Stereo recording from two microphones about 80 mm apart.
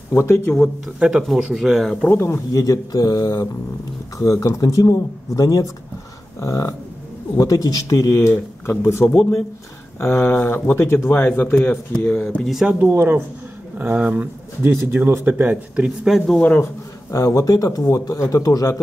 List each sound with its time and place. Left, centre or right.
0.1 s speech: left
0.9 s speech: centre
2.0 s speech: left
2.5 s speech: left; by 12.4 s centre
12.4 s speech: centre
12.8 s speech: right
16.2 s speech: centre
17.1 s speech: left